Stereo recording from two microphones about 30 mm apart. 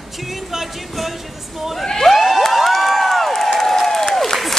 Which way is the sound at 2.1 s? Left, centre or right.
Centre.